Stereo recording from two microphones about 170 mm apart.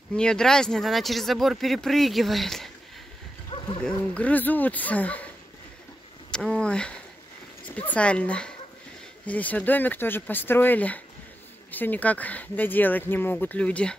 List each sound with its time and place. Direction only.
0.1 s speech: 5° left (ahead or behind)
3.5 s dog: 30° left (ahead or behind)
3.8 s speech: 5° left (ahead or behind)
6.3 s speech: 5° left (ahead or behind)